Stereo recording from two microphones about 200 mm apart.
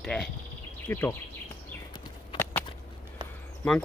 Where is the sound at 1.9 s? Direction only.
20° left (ahead or behind).